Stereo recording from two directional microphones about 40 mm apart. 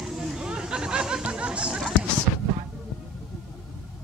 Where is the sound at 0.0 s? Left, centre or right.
Centre.